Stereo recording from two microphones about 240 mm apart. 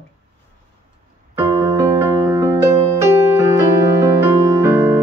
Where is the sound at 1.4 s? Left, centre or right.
Centre.